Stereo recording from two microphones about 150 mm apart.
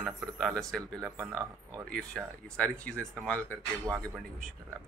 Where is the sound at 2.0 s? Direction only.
5° left (ahead or behind).